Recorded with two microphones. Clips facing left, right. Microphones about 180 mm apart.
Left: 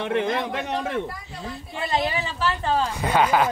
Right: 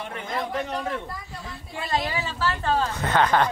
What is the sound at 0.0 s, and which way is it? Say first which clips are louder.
Speech: left 7 dB; 90° left.